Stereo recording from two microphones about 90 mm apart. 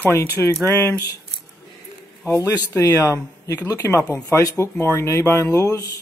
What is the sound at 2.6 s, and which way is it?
Speech, 40° left (ahead or behind).